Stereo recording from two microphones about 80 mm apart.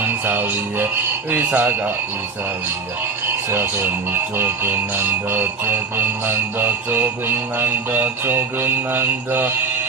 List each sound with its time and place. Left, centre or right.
0.0 s music: right
4.1 s music: right